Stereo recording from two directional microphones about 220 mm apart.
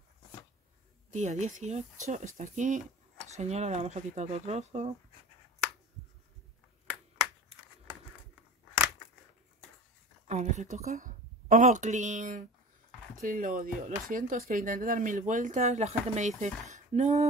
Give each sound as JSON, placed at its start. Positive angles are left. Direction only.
{"t": 1.1, "sound": "speech", "side_deg": -30}
{"t": 10.2, "sound": "a woman's voice", "side_deg": -30}